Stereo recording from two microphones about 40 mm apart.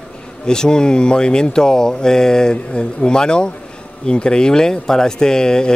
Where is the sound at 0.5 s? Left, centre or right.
Centre.